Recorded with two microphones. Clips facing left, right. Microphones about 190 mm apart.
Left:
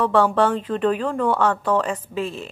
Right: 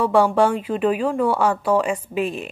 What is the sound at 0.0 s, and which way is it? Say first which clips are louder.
Speech: right 1 dB; 10° right (ahead or behind).